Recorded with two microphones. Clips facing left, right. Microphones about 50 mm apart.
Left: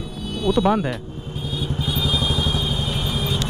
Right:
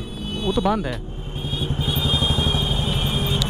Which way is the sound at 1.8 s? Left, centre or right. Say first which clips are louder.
Even; right.